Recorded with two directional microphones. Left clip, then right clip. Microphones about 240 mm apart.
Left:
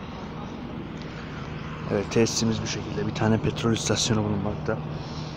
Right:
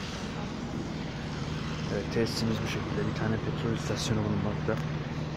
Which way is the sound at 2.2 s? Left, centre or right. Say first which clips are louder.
Left 7 dB; centre.